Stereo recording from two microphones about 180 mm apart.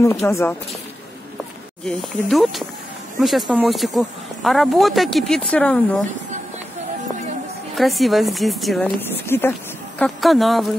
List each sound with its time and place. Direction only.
0.0 s speech: 15° left (ahead or behind)
1.9 s speech: centre (ahead or behind)
7.7 s speech: centre (ahead or behind)
9.9 s speech: centre (ahead or behind)